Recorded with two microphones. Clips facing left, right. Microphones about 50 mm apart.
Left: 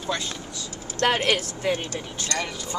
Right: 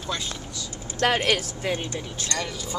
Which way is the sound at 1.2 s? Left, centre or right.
Centre.